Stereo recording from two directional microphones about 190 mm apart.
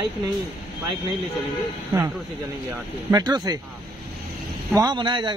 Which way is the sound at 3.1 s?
20° right (ahead or behind).